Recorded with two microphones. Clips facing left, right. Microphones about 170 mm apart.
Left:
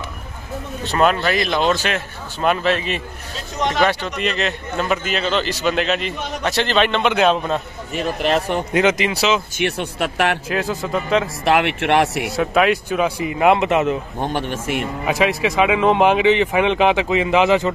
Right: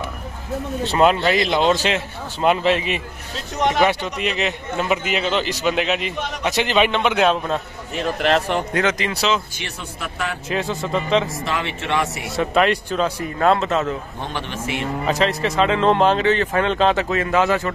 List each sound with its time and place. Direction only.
0.8 s a man's voice: 20° right (ahead or behind); by 9.4 s 5° left (ahead or behind)
9.6 s speech: 70° left (ahead or behind)
10.5 s speech: centre (ahead or behind)
11.4 s speech: 70° left (ahead or behind)
12.4 s speech: centre (ahead or behind)
14.2 s a man's voice: 50° left (ahead or behind)
15.0 s speech: 10° left (ahead or behind)